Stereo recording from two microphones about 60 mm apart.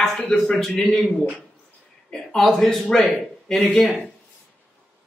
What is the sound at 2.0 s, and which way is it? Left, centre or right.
Speech, centre.